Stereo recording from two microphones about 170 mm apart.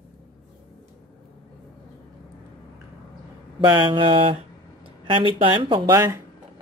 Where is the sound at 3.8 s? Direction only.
30° right (ahead or behind).